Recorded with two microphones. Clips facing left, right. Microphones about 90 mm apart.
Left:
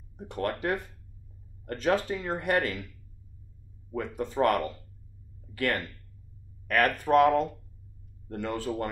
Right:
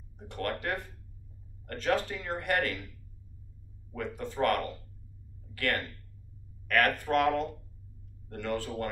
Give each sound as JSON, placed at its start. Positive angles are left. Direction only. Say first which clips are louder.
{"t": 0.4, "sound": "speech", "louder": "left 4 dB", "side_deg": 20}
{"t": 3.9, "sound": "speech", "louder": "left 5 dB", "side_deg": 20}
{"t": 7.1, "sound": "speech", "louder": "left 6 dB", "side_deg": 20}